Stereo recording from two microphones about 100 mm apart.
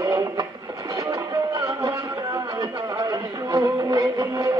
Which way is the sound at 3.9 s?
35° right (ahead or behind).